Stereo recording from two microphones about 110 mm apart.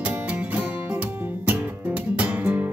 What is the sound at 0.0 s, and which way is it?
Music, 10° right (ahead or behind).